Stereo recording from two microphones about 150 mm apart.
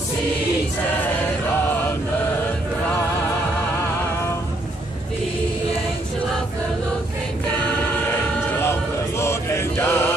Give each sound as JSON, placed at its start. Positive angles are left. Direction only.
{"t": 9.2, "sound": "mantra", "side_deg": 15}